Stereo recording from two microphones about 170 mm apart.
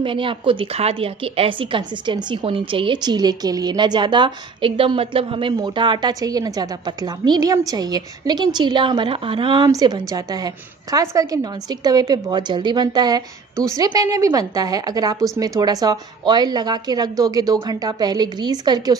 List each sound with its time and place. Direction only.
0.0 s a woman's voice: 30° right (ahead or behind)